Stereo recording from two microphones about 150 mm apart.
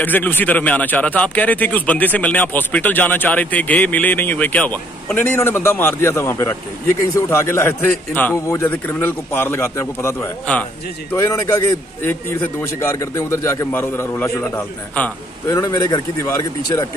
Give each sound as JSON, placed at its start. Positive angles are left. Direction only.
{"t": 0.0, "sound": "a man's voice", "side_deg": 10}